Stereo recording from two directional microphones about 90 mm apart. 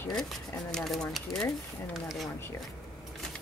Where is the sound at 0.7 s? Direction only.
5° left (ahead or behind).